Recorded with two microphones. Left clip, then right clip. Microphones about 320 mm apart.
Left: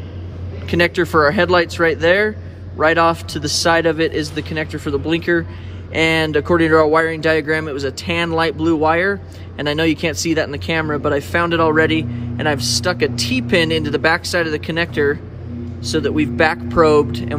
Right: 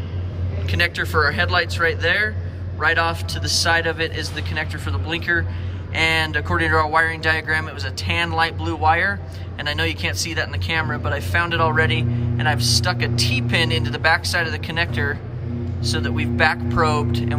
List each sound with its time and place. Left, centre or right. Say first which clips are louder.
0.7 s speech: left 5 dB; centre